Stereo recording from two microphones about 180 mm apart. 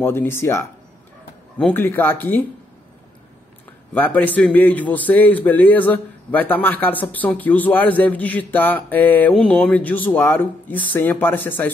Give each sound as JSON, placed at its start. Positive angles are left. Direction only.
{"t": 0.0, "sound": "a man's voice", "side_deg": 10}
{"t": 3.9, "sound": "a man's voice", "side_deg": 10}